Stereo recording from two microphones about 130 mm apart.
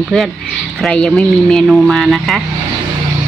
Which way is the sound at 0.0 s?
Centre (ahead or behind).